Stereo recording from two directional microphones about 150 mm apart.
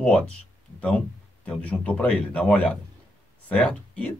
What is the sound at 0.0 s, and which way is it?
Speech, 5° left (ahead or behind).